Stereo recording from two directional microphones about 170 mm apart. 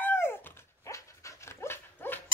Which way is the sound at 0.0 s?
15° left (ahead or behind).